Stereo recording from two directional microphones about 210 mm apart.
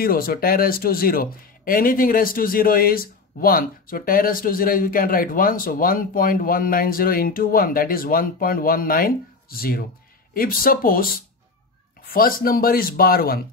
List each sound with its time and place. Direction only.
0.0 s speech: 45° left (ahead or behind)
12.1 s speech: 45° left (ahead or behind)